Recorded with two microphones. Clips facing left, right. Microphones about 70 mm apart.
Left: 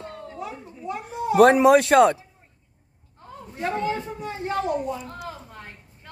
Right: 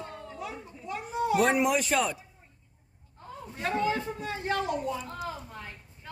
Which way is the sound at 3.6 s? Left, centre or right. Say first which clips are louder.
Left 3 dB; left.